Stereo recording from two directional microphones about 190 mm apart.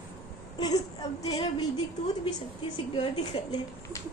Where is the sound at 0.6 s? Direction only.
20° left (ahead or behind).